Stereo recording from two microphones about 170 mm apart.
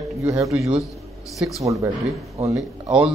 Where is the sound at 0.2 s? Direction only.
20° right (ahead or behind).